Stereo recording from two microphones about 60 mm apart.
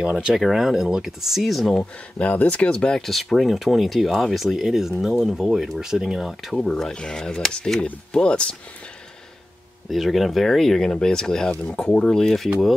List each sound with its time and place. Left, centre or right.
0.3 s speech: centre
1.8 s speech: left
3.0 s speech: centre
6.6 s speech: centre
9.8 s speech: centre
11.6 s speech: left